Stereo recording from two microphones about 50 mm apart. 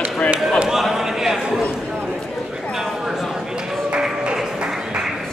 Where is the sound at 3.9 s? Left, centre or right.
Right.